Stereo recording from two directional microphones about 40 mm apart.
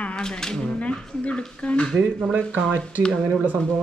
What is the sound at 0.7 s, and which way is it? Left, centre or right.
Speech, left.